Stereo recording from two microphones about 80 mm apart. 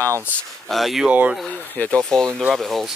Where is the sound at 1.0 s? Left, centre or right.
Centre.